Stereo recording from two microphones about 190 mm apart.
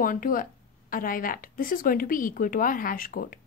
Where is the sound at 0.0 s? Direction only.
45° left (ahead or behind).